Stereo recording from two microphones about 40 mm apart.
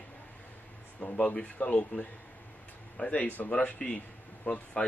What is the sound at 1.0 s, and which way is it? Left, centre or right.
Speech, left.